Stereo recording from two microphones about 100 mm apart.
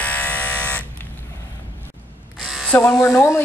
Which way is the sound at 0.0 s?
15° left (ahead or behind).